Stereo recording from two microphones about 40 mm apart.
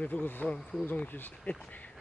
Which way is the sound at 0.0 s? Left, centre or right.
Left.